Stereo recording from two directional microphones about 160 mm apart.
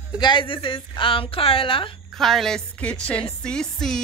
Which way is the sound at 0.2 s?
30° left (ahead or behind).